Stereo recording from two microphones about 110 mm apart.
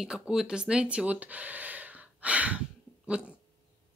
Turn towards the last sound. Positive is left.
turn(degrees=-10)  # may be behind; listen again after turning